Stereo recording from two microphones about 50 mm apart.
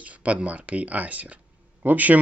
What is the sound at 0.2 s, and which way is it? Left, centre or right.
Speech, right.